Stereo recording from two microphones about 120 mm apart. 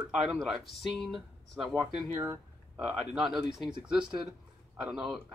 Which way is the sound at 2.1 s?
25° right (ahead or behind).